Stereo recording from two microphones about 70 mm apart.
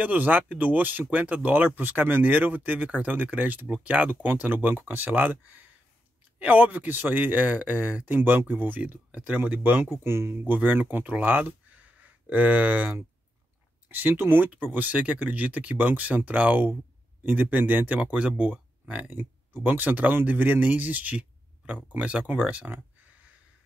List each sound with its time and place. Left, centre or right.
0.0 s speech: right
6.4 s speech: right
9.8 s speech: right